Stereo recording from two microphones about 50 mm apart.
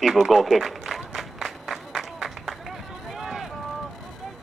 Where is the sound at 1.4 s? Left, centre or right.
Centre.